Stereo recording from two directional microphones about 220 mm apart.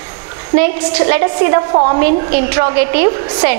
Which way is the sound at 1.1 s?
15° right (ahead or behind).